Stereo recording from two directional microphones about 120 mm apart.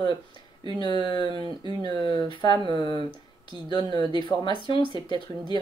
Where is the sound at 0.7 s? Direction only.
40° left (ahead or behind).